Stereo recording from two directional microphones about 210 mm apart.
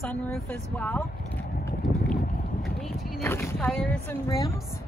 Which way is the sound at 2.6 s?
Centre (ahead or behind).